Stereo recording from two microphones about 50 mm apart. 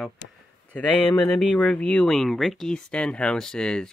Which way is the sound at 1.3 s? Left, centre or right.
Left.